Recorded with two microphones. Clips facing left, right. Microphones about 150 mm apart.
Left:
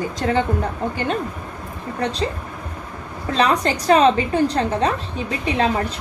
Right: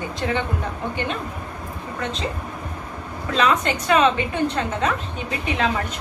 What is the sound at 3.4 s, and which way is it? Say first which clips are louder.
A woman's voice: left 2 dB; 35° left (ahead or behind).